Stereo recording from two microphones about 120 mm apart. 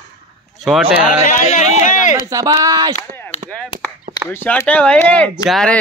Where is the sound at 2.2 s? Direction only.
30° right (ahead or behind).